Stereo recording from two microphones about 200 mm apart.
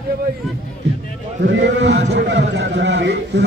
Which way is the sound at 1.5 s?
65° right (ahead or behind).